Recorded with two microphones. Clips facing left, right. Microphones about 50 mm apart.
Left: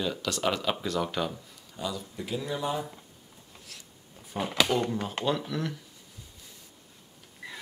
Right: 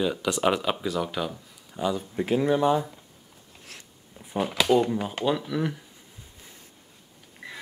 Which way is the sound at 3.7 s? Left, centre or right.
Right.